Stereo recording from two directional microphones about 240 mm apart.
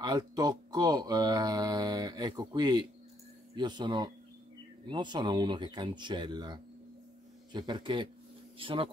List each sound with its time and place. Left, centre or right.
0.0 s speech: centre